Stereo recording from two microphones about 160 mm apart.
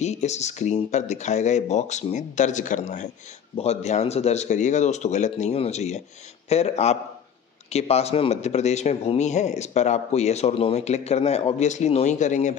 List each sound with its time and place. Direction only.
0.0 s speech: 45° left (ahead or behind)